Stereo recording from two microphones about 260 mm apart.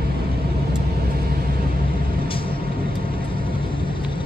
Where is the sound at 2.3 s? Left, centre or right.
Left.